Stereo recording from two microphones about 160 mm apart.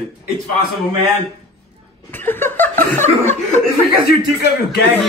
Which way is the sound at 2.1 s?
10° left (ahead or behind).